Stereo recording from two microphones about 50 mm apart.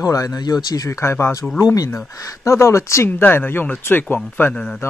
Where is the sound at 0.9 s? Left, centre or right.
Left.